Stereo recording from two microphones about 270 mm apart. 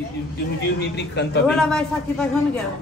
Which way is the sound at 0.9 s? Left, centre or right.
Left.